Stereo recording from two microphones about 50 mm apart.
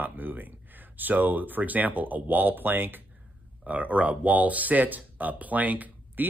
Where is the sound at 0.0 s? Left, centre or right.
Right.